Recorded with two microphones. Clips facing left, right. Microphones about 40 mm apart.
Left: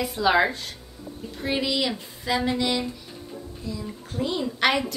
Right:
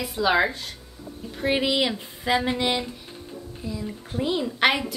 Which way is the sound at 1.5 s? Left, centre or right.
Right.